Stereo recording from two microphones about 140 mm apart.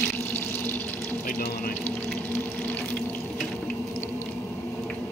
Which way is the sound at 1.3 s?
90° left.